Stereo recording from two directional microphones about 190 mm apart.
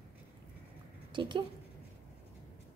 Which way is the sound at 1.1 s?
25° right (ahead or behind).